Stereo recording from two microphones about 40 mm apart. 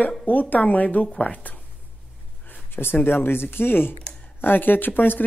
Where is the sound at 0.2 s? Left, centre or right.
Left.